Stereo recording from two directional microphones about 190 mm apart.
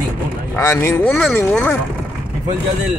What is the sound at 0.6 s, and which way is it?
Speech, 15° left (ahead or behind).